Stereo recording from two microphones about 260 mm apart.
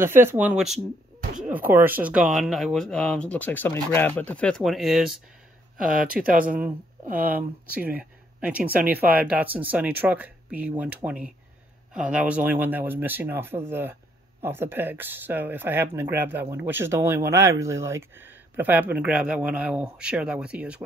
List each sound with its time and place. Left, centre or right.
0.0 s speech: centre
6.2 s speech: right
6.5 s speech: centre